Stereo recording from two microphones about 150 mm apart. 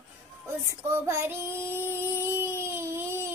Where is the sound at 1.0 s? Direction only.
15° right (ahead or behind).